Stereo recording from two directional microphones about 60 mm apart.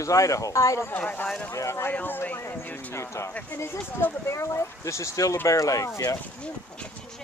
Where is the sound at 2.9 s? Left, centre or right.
Left.